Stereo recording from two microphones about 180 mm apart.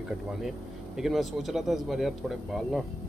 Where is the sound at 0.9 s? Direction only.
Centre (ahead or behind).